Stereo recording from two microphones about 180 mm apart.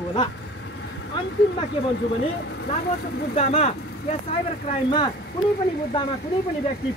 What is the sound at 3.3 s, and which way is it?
Speech, 35° left (ahead or behind).